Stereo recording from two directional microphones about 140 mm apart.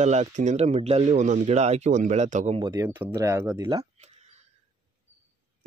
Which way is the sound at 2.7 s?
15° right (ahead or behind).